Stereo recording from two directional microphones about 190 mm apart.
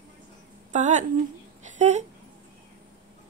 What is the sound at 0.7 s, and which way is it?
Speech, 40° right (ahead or behind).